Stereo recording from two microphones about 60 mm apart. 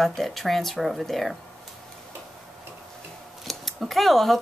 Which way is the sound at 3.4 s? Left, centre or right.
Centre.